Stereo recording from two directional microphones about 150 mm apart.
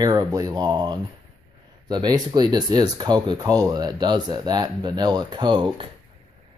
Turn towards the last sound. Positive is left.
turn(degrees=-30)  # may be behind; listen again after turning